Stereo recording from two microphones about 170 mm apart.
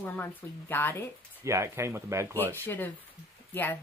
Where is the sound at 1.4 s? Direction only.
15° right (ahead or behind).